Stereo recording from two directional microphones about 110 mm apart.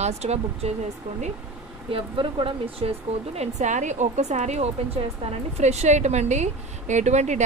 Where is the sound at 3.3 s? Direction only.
90° right.